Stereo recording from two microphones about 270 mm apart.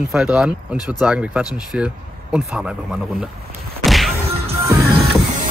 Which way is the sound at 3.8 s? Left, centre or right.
Centre.